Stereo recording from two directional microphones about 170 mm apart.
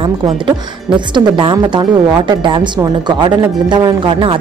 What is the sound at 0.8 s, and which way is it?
A woman's voice, 25° right (ahead or behind).